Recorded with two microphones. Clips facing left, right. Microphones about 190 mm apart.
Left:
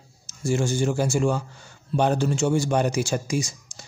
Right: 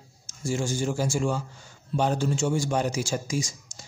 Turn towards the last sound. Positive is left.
turn(degrees=65)  # may be behind; listen again after turning